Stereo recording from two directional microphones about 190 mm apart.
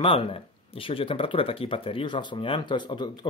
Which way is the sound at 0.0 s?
30° left (ahead or behind).